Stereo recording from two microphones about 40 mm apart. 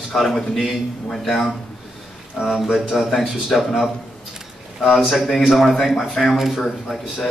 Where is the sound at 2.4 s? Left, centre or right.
Centre.